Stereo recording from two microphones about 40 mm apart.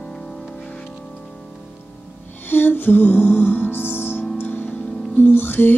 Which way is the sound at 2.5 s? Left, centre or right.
Left.